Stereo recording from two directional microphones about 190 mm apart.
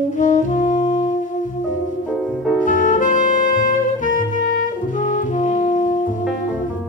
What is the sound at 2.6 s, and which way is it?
Saxophone, 45° left (ahead or behind).